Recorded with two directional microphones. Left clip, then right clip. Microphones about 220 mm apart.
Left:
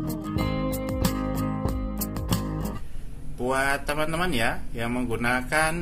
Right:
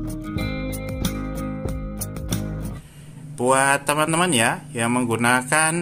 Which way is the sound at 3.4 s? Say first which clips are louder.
Right 7 dB; 25° right (ahead or behind).